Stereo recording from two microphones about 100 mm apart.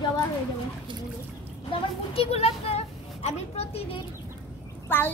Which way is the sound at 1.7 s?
80° left.